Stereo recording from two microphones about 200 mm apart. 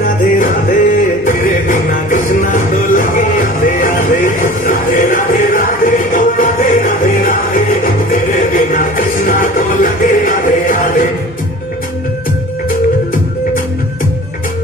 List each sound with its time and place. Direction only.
0.0 s music: 45° left (ahead or behind)